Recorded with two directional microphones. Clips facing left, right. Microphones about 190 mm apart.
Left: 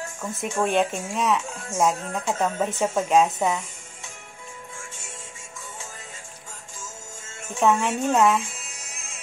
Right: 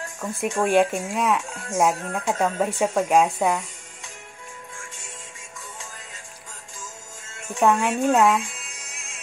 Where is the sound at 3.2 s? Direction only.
Centre (ahead or behind).